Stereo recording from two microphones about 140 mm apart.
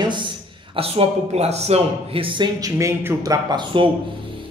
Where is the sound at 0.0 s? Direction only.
35° right (ahead or behind).